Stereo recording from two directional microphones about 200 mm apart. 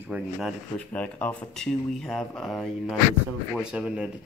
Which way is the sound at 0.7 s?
5° left (ahead or behind).